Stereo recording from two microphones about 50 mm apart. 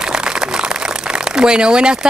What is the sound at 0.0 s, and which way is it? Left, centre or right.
Speech, centre.